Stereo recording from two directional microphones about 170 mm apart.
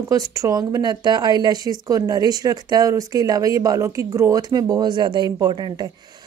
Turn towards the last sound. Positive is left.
turn(degrees=-25)  # may be behind; listen again after turning